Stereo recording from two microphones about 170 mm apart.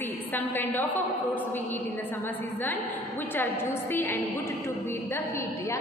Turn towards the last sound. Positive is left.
turn(degrees=15)  # may be behind; listen again after turning